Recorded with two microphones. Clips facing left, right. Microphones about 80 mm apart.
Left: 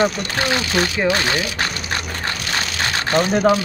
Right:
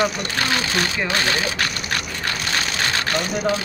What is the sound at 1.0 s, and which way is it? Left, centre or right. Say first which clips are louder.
Speech: left 3 dB; right.